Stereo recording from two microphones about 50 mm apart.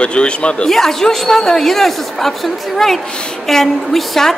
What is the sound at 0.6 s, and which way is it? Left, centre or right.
A woman's voice, centre.